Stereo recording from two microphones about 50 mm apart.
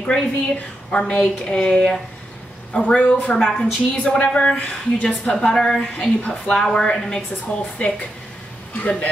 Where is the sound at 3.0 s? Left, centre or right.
Left.